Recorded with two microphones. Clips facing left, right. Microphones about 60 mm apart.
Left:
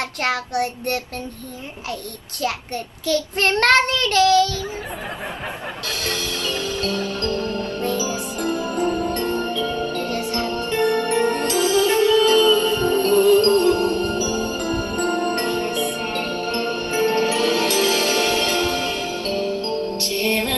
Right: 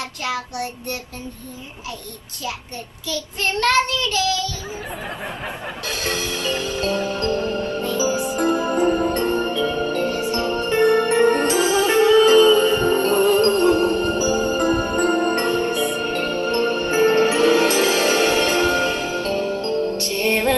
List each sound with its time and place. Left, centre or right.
0.2 s child singing: left
3.1 s child singing: left
5.9 s music: right
8.4 s music: right
15.7 s music: centre
16.1 s music: right